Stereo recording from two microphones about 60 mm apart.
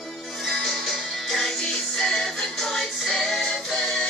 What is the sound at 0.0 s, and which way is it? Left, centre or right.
Music, centre.